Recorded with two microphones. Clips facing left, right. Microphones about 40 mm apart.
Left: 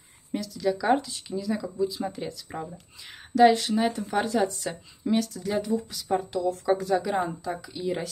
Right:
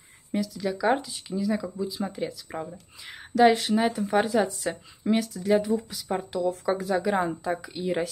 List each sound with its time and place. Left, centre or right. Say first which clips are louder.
0.3 s speech: left 1 dB; centre
7.2 s speech: right 2 dB; right